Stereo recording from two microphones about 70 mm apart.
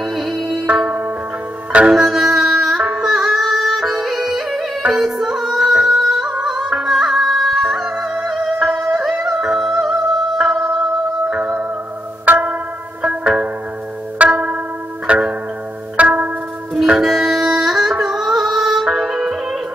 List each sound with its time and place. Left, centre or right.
0.0 s music: centre
0.8 s music: right
2.0 s music: centre
11.2 s music: centre
16.7 s music: centre